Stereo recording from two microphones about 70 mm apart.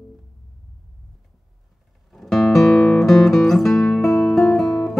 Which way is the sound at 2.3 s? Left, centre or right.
Centre.